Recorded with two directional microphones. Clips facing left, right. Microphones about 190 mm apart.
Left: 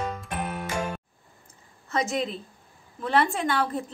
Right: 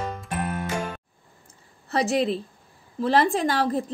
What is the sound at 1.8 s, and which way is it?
A woman's voice, 35° right (ahead or behind).